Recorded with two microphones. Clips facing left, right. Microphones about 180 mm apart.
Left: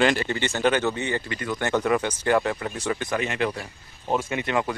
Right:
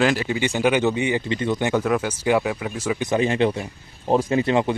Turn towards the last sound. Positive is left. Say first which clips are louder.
# right 6 dB
turn(degrees=-30)  # may be behind; listen again after turning